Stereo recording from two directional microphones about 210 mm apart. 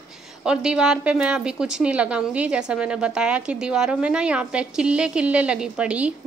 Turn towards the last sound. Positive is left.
turn(degrees=-5)  # may be behind; listen again after turning